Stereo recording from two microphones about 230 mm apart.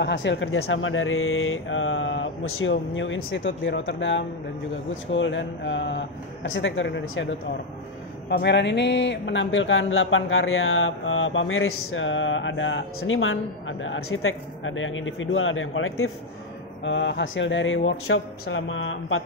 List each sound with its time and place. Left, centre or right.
0.0 s speech: left
16.8 s speech: left